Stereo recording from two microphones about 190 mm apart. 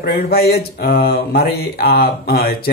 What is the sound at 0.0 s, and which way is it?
Speech, 55° left (ahead or behind).